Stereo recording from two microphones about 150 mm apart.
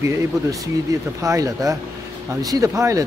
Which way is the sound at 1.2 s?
20° right (ahead or behind).